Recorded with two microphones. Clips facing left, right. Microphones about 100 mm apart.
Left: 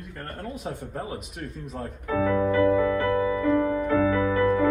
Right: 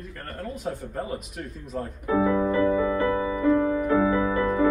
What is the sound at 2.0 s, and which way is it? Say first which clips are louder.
Music: right 1 dB; 20° right (ahead or behind).